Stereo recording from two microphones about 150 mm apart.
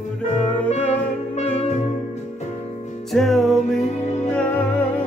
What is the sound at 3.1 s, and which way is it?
Music, centre (ahead or behind).